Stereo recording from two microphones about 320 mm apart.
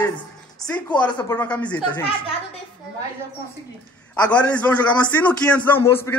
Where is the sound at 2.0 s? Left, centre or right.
Centre.